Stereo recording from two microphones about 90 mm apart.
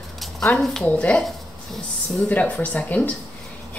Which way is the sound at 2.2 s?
15° left (ahead or behind).